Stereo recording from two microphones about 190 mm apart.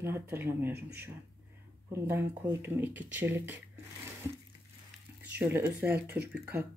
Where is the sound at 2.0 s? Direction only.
10° right (ahead or behind).